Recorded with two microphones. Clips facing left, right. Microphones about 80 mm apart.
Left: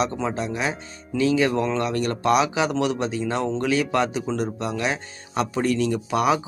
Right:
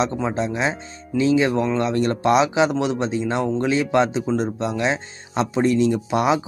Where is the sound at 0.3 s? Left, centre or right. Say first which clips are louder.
Right 3 dB; right.